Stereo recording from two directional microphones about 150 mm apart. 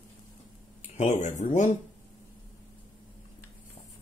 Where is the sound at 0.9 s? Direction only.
55° left (ahead or behind).